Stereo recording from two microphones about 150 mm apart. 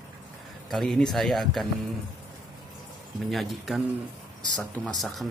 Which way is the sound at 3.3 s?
Centre (ahead or behind).